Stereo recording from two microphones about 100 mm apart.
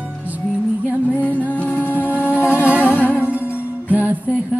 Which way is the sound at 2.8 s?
15° left (ahead or behind).